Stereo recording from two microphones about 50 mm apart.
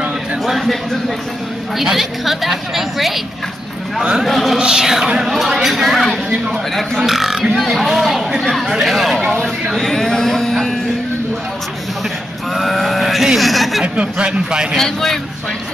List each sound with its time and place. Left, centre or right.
0.5 s a sound: centre
1.8 s a woman's voice: centre
4.2 s a woman's voice: centre
4.6 s music: centre
5.3 s a woman's voice: centre
12.5 s a woman's voice: centre
13.9 s a man's voice: right
14.7 s a woman's voice: centre